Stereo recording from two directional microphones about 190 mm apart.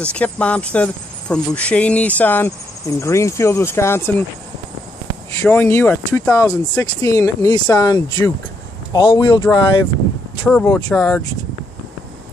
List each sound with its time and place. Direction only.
0.1 s speech: 5° left (ahead or behind)
5.4 s speech: 10° left (ahead or behind)
10.4 s speech: 10° left (ahead or behind)